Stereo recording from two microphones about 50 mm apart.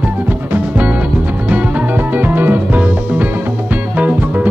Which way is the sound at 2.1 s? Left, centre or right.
Right.